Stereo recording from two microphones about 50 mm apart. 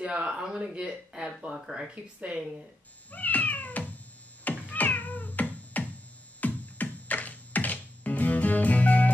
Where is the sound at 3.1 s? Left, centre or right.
Left.